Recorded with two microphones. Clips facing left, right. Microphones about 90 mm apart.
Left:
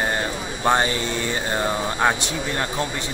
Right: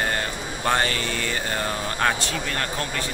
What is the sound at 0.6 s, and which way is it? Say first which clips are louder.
Speech: left 3 dB; 20° left (ahead or behind).